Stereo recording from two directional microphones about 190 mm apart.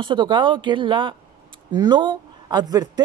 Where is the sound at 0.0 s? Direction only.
25° right (ahead or behind).